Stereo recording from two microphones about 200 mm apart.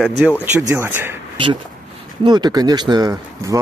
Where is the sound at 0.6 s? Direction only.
10° right (ahead or behind).